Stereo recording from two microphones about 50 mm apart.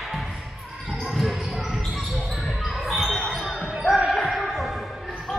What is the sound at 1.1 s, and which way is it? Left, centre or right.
Basketball bounce, centre.